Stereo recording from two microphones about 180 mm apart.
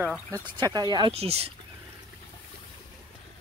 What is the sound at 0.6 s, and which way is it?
Speech, 25° right (ahead or behind).